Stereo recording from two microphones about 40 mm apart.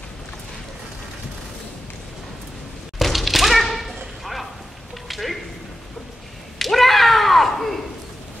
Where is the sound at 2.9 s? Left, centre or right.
Centre.